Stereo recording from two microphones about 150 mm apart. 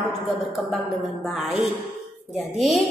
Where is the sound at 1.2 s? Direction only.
Centre (ahead or behind).